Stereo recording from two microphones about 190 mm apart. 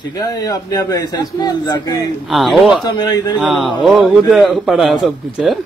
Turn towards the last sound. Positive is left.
turn(degrees=0)  # may be behind; listen again after turning